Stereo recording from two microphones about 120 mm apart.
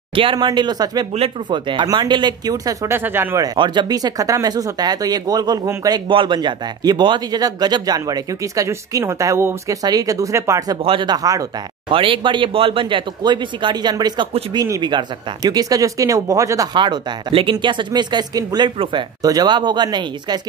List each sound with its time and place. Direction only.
0.1 s speech: 45° right (ahead or behind)
1.1 s speech: 50° right (ahead or behind); by 3.4 s 20° right (ahead or behind)
3.4 s speech: 40° right (ahead or behind); by 10.8 s 25° right (ahead or behind)
10.8 s speech: 50° right (ahead or behind)
11.1 s speech: 30° right (ahead or behind)
11.9 s speech: 45° right (ahead or behind); by 16.6 s 30° right (ahead or behind)
16.7 s speech: 40° right (ahead or behind)